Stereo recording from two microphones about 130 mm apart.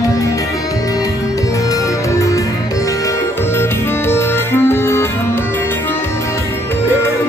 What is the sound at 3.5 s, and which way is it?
Music, 20° left (ahead or behind).